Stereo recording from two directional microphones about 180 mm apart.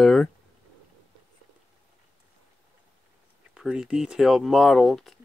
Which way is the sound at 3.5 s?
5° right (ahead or behind).